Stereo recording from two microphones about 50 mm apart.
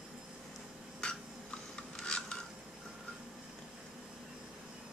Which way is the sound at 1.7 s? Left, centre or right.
Centre.